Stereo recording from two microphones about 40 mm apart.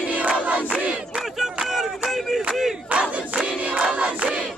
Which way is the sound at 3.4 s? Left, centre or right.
Right.